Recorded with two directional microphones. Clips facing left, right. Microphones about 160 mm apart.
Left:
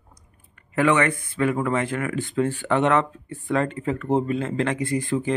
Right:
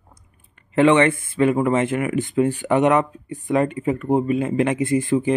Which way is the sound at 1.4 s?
20° right (ahead or behind).